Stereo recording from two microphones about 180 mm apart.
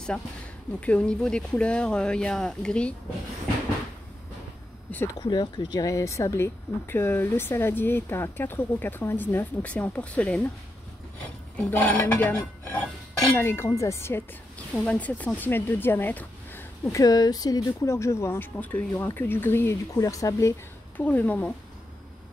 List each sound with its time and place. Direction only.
0.1 s speech: 5° left (ahead or behind)
5.2 s speech: 25° left (ahead or behind); by 10.5 s 5° left (ahead or behind)
11.5 s speech: 10° left (ahead or behind)